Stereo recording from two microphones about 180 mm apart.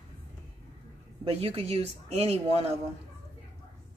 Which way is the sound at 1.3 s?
35° right (ahead or behind).